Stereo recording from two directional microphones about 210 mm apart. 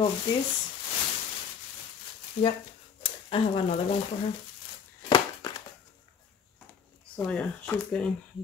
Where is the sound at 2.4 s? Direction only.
30° left (ahead or behind).